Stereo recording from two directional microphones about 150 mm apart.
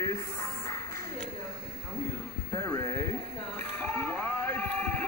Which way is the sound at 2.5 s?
20° left (ahead or behind).